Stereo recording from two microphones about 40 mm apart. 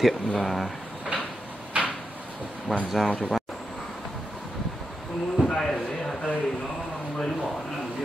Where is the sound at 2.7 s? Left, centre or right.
Right.